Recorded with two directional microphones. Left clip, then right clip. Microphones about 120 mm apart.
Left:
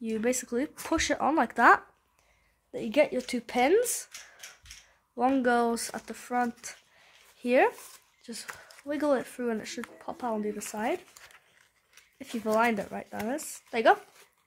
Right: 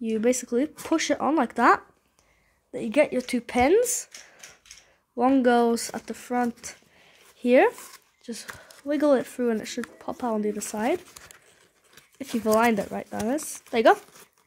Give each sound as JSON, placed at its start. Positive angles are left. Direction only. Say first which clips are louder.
{"t": 0.1, "sound": "speech", "louder": "right 6 dB", "side_deg": -15}
{"t": 5.1, "sound": "speech", "louder": "right 5 dB", "side_deg": -15}